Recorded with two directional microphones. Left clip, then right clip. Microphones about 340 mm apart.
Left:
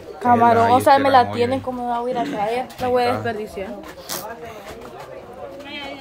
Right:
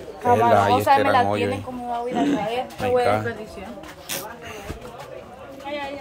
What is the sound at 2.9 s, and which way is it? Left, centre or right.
Speech, left.